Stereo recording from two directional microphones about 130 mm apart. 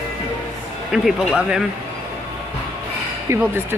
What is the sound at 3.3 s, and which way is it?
Speech, 15° right (ahead or behind).